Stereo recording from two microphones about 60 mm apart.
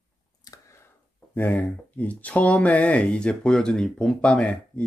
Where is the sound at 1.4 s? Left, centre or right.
Left.